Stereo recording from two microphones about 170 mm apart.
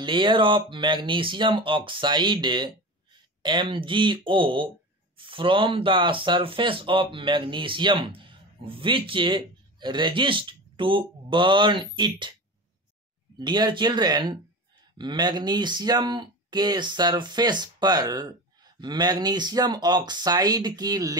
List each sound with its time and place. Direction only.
0.0 s speech: 30° right (ahead or behind)
13.4 s speech: 25° right (ahead or behind)